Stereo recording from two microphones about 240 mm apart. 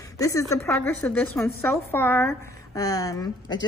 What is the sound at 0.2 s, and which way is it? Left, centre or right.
A woman's voice, centre.